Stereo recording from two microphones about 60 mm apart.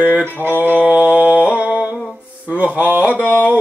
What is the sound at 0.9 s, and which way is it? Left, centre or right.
Mantra, centre.